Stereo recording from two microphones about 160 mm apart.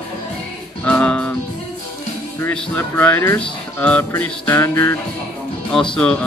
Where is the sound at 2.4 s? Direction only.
10° left (ahead or behind).